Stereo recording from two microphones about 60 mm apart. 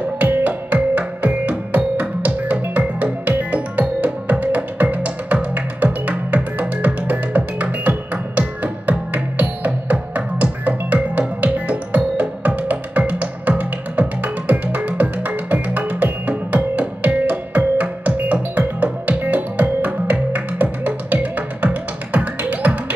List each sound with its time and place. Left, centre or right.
0.2 s music: right